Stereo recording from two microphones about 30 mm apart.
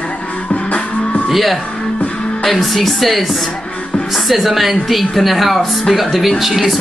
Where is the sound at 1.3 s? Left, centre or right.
Centre.